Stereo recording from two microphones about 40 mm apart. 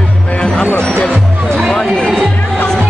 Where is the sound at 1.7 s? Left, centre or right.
Centre.